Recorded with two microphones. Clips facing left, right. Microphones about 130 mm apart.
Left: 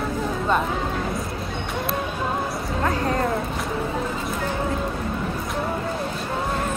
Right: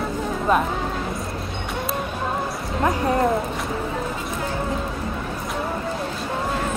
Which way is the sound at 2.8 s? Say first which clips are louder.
Right 3 dB; 10° right (ahead or behind).